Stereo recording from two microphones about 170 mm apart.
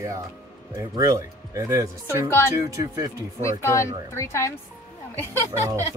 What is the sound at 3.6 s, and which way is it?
Speech, 15° left (ahead or behind).